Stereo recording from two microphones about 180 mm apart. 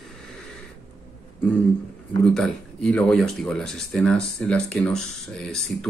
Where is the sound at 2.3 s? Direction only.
5° left (ahead or behind).